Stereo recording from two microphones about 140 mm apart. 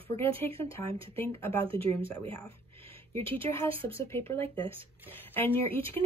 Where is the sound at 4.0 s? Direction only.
15° left (ahead or behind).